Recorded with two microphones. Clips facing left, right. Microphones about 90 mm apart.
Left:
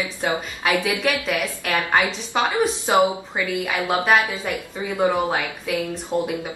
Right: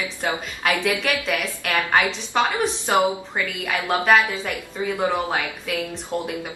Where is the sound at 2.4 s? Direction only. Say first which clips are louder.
Left 2 dB; 15° left (ahead or behind).